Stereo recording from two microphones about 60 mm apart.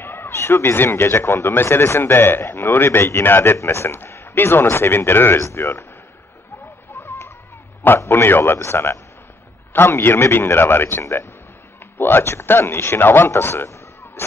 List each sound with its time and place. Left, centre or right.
0.0 s speech: left
7.0 s a sound: left
7.8 s speech: left